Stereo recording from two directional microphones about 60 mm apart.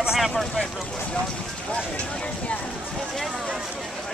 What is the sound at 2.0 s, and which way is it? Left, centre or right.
Speech, centre.